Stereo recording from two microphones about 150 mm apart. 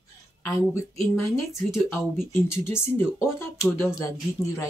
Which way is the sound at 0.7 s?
20° left (ahead or behind).